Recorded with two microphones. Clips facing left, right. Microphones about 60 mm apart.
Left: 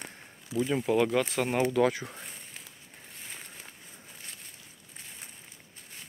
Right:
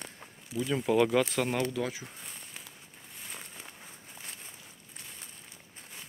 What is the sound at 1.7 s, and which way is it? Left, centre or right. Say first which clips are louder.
Speech: left 8 dB; left.